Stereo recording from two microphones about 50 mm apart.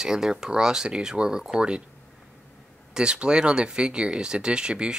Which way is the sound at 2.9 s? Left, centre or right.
Centre.